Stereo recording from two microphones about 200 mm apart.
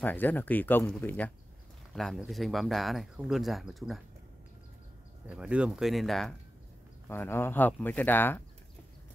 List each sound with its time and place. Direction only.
0.0 s speech: 10° left (ahead or behind)
5.3 s speech: 5° right (ahead or behind)
7.1 s speech: 10° left (ahead or behind)